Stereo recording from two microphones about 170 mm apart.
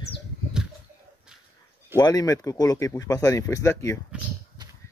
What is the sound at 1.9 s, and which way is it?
Speech, 25° left (ahead or behind).